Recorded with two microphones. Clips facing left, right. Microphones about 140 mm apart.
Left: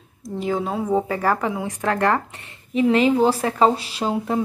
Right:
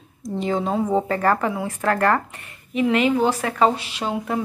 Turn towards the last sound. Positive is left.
turn(degrees=30)  # may be behind; listen again after turning